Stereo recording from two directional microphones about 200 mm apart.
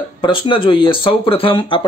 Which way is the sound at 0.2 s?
25° left (ahead or behind).